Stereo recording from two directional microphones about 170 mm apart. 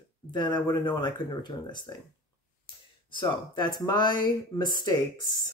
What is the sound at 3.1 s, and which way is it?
Speech, 25° left (ahead or behind).